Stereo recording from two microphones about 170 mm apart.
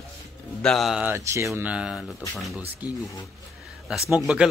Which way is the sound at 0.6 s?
Centre (ahead or behind).